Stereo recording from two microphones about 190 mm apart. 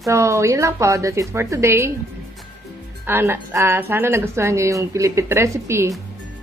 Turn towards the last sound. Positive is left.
turn(degrees=-15)  # may be behind; listen again after turning